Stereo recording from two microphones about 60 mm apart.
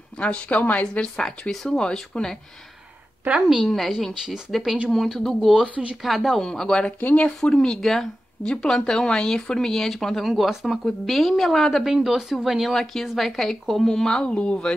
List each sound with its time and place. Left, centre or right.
0.2 s a woman's voice: centre
1.1 s speech: centre
3.3 s a woman's voice: centre
7.0 s a woman's voice: left
7.3 s a woman's voice: centre
11.8 s a woman's voice: centre
12.7 s speech: centre